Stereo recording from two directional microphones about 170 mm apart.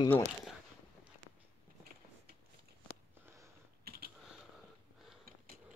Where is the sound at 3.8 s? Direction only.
65° right (ahead or behind).